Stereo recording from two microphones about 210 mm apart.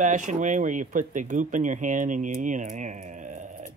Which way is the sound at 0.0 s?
35° right (ahead or behind).